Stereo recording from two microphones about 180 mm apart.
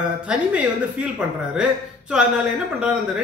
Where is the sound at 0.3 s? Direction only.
5° right (ahead or behind).